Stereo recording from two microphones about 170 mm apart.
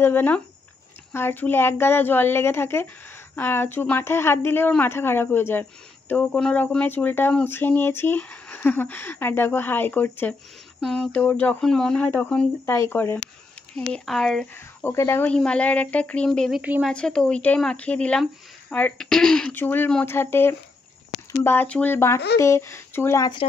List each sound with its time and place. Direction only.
0.0 s speech: 10° left (ahead or behind)
14.5 s speech: 15° left (ahead or behind)